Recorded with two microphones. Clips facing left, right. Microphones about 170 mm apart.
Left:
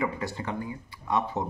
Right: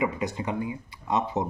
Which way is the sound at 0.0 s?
20° right (ahead or behind).